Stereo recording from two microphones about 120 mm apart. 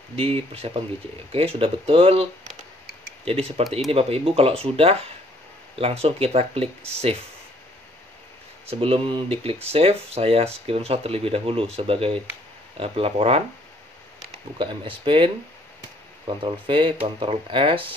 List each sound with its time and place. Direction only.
0.1 s speech: 50° right (ahead or behind)
3.3 s speech: 55° right (ahead or behind)
8.6 s speech: 50° right (ahead or behind)
14.6 s speech: 45° right (ahead or behind)
16.4 s speech: 45° right (ahead or behind)